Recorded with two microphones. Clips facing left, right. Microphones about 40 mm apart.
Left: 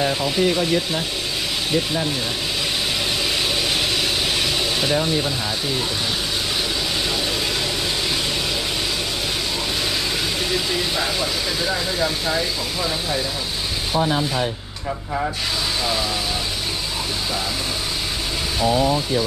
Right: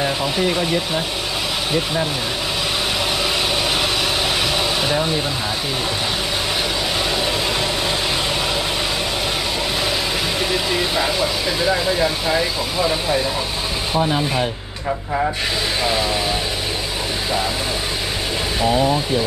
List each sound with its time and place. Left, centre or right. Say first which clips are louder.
0.0 s speech: even; centre
4.8 s speech: right 1 dB; centre
10.5 s speech: right 3 dB; centre
12.4 s speech: right 4 dB; centre